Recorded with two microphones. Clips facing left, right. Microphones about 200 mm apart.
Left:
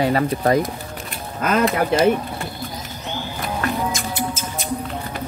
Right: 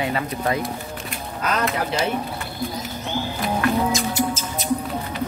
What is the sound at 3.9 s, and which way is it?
Music, 55° left (ahead or behind).